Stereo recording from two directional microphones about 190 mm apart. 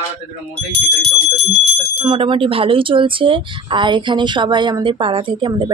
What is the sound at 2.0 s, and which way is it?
Speech, 25° right (ahead or behind).